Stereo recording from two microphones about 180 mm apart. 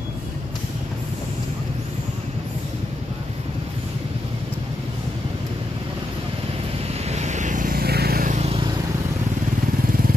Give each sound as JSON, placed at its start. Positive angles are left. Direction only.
{"t": 7.1, "sound": "vehicle", "side_deg": -40}
{"t": 8.4, "sound": "vehicle", "side_deg": -30}